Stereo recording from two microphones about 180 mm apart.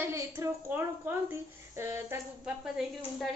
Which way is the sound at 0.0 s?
15° right (ahead or behind).